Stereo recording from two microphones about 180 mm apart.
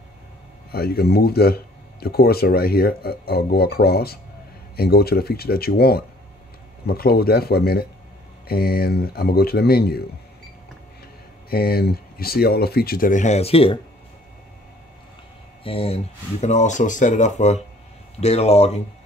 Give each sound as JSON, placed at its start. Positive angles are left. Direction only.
{"t": 0.7, "sound": "speech", "side_deg": 60}
{"t": 11.5, "sound": "speech", "side_deg": 60}
{"t": 15.6, "sound": "speech", "side_deg": 30}